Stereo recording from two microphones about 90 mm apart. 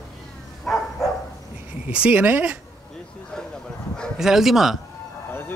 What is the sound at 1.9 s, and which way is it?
Speech, 15° right (ahead or behind).